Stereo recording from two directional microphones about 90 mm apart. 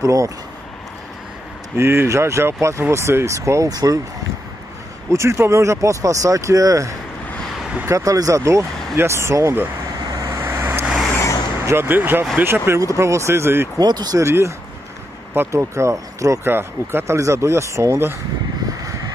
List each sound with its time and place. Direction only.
0.0 s speech: 40° right (ahead or behind)
1.8 s speech: 30° right (ahead or behind)
5.1 s speech: 30° right (ahead or behind)
10.1 s vehicle: 35° right (ahead or behind)
11.6 s speech: 25° right (ahead or behind)
13.7 s speech: 50° right (ahead or behind)
14.2 s speech: 30° right (ahead or behind)
18.9 s vehicle: 40° right (ahead or behind)